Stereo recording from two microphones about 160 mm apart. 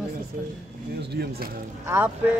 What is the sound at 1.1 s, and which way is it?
Speech, 85° right.